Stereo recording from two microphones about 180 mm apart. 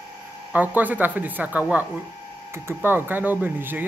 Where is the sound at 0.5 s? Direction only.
10° right (ahead or behind).